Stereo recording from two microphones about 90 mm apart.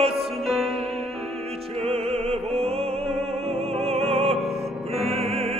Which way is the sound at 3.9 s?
90° right.